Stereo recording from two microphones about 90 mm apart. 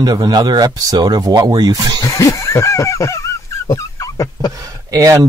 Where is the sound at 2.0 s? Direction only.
40° left (ahead or behind).